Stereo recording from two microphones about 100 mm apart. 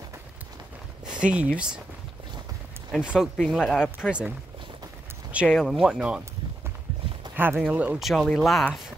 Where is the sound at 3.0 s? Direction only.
10° right (ahead or behind).